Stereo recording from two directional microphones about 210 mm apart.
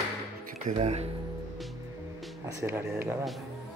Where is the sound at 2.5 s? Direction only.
15° right (ahead or behind).